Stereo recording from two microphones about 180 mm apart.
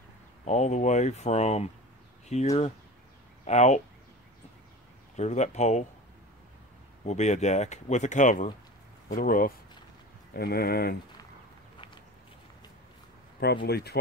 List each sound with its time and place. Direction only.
0.5 s speech: 40° left (ahead or behind)
5.1 s speech: 40° left (ahead or behind)
7.1 s speech: 40° left (ahead or behind); by 11.0 s 60° left (ahead or behind)
13.7 s speech: 60° left (ahead or behind)